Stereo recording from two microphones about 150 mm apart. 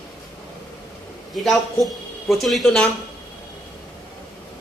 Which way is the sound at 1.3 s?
Centre (ahead or behind).